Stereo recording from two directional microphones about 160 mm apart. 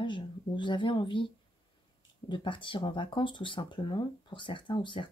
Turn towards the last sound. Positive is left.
turn(degrees=30)  # may be behind; listen again after turning